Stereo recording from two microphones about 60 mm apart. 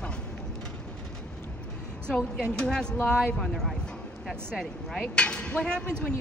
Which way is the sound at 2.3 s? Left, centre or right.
Centre.